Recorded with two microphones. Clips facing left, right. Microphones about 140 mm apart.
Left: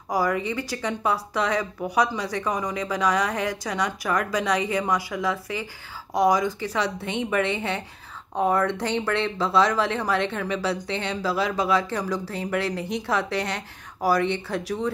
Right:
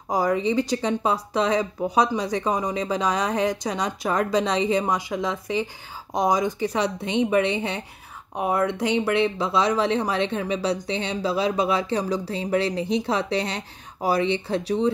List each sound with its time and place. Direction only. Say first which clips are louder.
0.1 s a woman's voice: right 3 dB; 20° right (ahead or behind)